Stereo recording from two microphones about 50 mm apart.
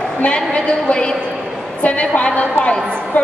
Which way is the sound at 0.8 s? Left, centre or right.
Centre.